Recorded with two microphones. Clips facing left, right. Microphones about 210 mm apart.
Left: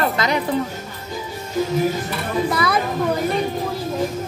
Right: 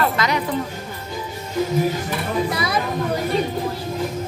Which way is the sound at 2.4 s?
55° left (ahead or behind).